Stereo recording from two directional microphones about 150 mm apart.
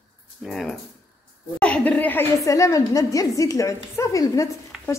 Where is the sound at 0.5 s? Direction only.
Centre (ahead or behind).